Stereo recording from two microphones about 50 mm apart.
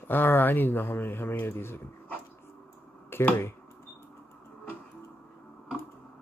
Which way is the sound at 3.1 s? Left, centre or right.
Left.